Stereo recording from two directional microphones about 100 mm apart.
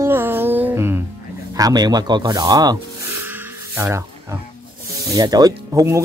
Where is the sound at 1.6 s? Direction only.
40° right (ahead or behind).